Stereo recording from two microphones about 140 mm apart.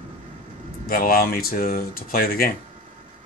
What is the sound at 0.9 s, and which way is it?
Speech, 90° left.